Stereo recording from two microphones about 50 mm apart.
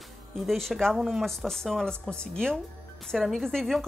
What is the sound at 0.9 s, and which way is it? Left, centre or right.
Speech, centre.